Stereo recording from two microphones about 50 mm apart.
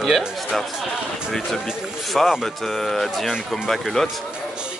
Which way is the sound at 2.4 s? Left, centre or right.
Centre.